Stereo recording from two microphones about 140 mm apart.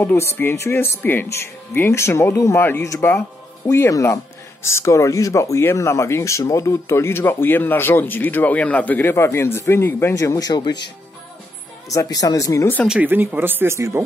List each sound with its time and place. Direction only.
0.0 s speech: 15° left (ahead or behind)
11.9 s speech: 25° left (ahead or behind)
12.8 s speech: 10° right (ahead or behind)